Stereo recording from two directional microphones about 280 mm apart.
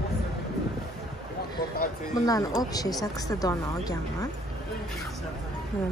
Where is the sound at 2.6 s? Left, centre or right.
Centre.